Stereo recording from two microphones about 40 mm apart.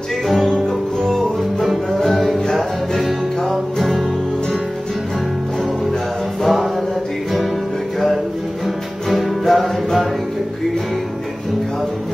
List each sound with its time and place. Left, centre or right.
0.3 s music: centre
3.0 s music: centre
6.4 s music: centre
9.1 s music: centre